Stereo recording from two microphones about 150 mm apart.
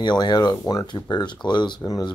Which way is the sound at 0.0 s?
30° left (ahead or behind).